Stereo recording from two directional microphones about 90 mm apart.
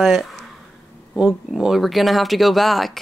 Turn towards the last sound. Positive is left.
turn(degrees=0)  # may be behind; listen again after turning